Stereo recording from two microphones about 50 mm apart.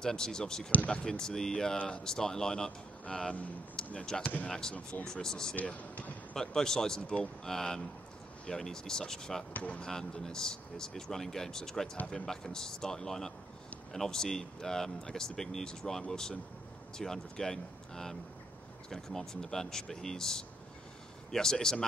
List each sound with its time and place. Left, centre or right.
0.0 s speech: centre
0.7 s speech: left
1.0 s speech: centre
3.7 s basketball bounce: centre
4.2 s speech: left
4.5 s speech: centre
5.8 s basketball bounce: left
6.3 s speech: centre
9.5 s speech: left
9.8 s speech: centre